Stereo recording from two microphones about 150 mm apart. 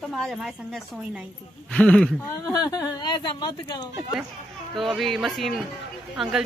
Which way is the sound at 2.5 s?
25° left (ahead or behind).